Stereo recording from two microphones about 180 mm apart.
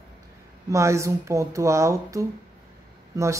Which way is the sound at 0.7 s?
15° right (ahead or behind).